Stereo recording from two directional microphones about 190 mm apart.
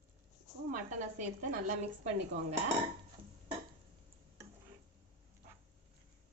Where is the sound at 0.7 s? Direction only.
40° right (ahead or behind).